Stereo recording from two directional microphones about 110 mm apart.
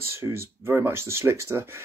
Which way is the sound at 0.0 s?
25° right (ahead or behind).